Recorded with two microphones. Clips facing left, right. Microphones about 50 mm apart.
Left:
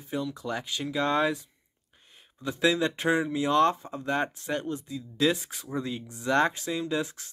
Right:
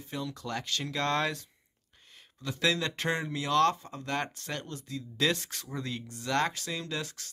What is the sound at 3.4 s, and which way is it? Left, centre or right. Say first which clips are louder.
Speech: left 1 dB; left.